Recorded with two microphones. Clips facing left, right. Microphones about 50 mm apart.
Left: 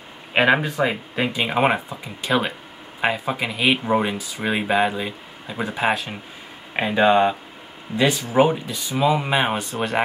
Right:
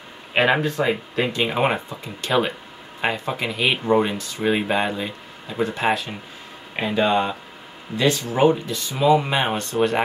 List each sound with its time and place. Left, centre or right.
0.3 s speech: centre